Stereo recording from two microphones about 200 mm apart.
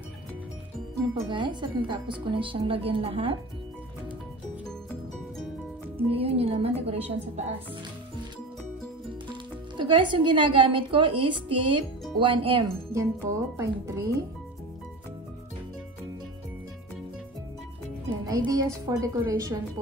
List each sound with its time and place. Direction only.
1.3 s speech: 25° right (ahead or behind)
5.9 s speech: 30° right (ahead or behind)
9.8 s speech: 25° right (ahead or behind)
12.9 s a woman's voice: 15° right (ahead or behind)
18.2 s a woman's voice: 15° right (ahead or behind)